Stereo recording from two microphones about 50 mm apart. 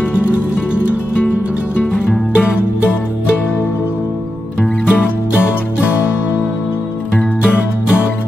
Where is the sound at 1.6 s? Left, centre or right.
Left.